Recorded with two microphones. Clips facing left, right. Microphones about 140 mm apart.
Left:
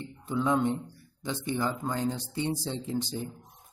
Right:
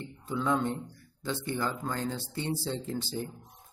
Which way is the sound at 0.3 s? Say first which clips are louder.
Left 3 dB; 15° left (ahead or behind).